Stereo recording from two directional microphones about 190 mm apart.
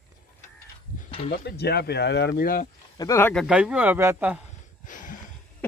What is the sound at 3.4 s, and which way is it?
Speech, 5° right (ahead or behind).